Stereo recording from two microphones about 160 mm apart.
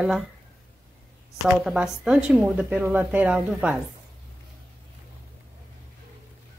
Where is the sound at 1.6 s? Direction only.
Centre (ahead or behind).